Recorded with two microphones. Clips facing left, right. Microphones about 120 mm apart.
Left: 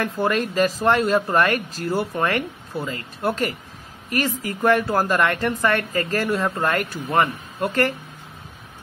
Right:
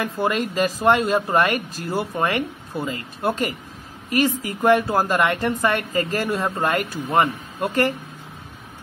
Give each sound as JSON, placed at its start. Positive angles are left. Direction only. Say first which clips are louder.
{"t": 0.0, "sound": "speech", "louder": "left 1 dB", "side_deg": -15}